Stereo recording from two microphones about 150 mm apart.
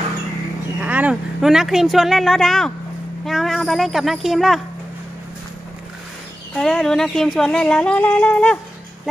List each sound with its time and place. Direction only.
0.7 s speech: 10° right (ahead or behind)
6.5 s speech: 5° left (ahead or behind)